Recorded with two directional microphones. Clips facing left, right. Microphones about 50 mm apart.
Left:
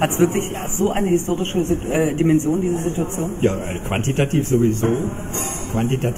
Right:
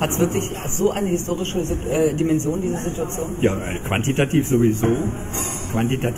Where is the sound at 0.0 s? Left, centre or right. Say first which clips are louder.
Left 3 dB; centre.